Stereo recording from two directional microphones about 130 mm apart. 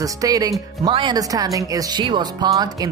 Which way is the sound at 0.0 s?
25° right (ahead or behind).